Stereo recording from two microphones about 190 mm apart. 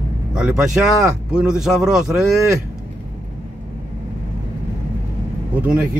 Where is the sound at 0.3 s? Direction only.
5° right (ahead or behind).